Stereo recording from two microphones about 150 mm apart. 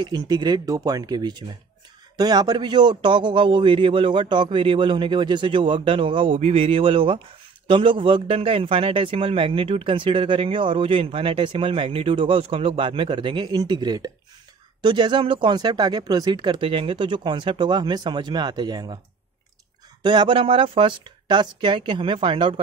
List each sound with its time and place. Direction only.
0.0 s a man's voice: 30° right (ahead or behind)
20.0 s a man's voice: 30° right (ahead or behind)